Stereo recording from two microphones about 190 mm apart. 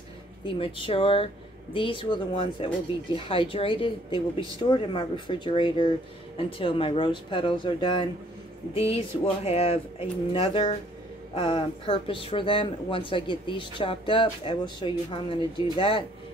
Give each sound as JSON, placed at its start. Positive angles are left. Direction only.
{"t": 0.6, "sound": "speech", "side_deg": 25}